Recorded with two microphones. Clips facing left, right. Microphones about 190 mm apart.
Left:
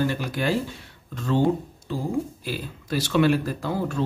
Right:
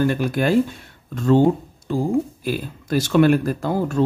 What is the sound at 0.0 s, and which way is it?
Speech, 50° right (ahead or behind).